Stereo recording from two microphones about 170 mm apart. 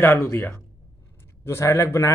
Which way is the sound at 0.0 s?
15° left (ahead or behind).